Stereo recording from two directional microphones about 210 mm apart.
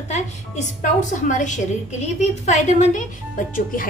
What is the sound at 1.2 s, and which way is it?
A woman's voice, 35° left (ahead or behind).